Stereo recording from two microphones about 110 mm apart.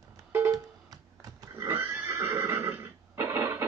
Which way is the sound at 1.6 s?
20° right (ahead or behind).